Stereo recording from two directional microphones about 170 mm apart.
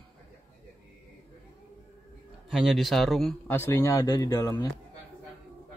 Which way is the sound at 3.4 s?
10° left (ahead or behind).